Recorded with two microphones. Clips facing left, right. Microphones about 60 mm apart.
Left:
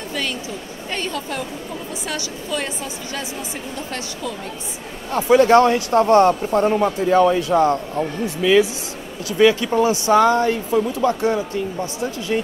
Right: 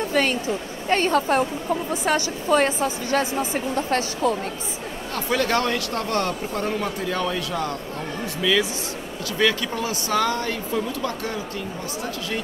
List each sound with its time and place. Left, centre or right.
0.1 s a woman's voice: right
5.1 s speech: left
8.4 s speech: left